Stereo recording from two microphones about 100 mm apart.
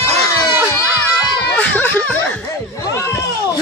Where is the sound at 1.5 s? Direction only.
15° left (ahead or behind).